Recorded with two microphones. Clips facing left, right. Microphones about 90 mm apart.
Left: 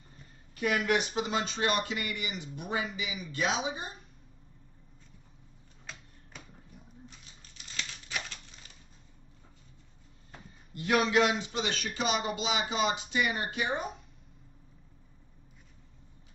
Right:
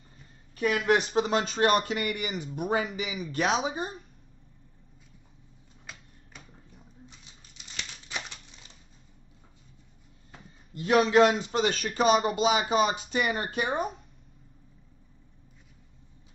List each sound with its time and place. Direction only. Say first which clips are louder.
0.6 s speech: right 4 dB; 40° right (ahead or behind)
7.5 s crumpling: left 1 dB; 20° right (ahead or behind)
10.7 s speech: right 5 dB; 30° right (ahead or behind); by 13.8 s 45° right (ahead or behind)